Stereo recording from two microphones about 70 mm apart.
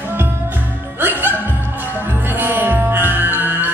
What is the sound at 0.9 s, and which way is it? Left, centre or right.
Music, right.